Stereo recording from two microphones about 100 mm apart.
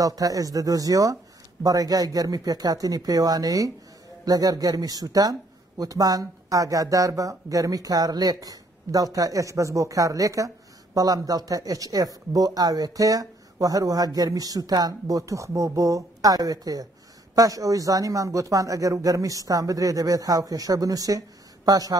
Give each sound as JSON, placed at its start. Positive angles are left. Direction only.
{"t": 0.0, "sound": "speech", "side_deg": -35}